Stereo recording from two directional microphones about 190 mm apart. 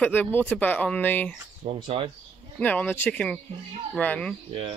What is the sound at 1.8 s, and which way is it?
Speech, 25° right (ahead or behind).